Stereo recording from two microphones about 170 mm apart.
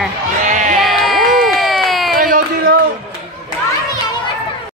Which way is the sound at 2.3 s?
55° right (ahead or behind).